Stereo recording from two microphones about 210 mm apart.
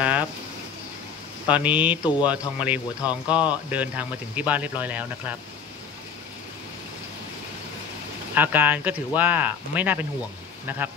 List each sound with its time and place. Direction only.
0.0 s a sound: 5° right (ahead or behind)
1.5 s speech: 5° right (ahead or behind)
3.1 s speech: 20° left (ahead or behind)
3.4 s speech: 5° right (ahead or behind)
8.4 s speech: 10° right (ahead or behind)